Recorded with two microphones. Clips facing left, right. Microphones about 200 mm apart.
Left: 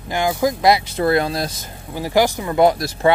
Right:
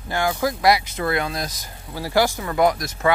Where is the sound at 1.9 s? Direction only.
15° left (ahead or behind).